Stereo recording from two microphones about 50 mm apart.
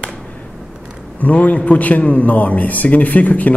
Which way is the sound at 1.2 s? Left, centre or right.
Left.